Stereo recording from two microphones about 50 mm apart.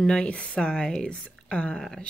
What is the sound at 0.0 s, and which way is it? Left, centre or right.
Speech, centre.